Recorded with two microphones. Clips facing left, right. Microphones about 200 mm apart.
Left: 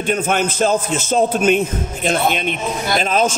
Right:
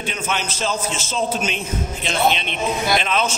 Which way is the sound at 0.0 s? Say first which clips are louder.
Left 8 dB; 50° left (ahead or behind).